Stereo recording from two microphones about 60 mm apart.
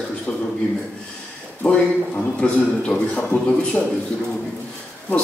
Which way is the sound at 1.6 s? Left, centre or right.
Left.